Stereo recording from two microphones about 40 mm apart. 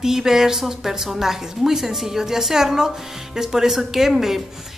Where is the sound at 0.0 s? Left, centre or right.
Centre.